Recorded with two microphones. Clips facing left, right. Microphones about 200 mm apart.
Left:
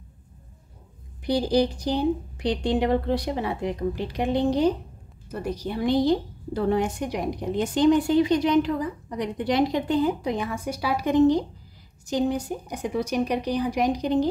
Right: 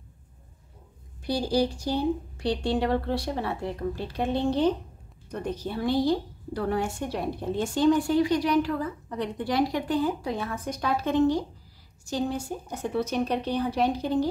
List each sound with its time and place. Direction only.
1.2 s a woman's voice: 20° left (ahead or behind)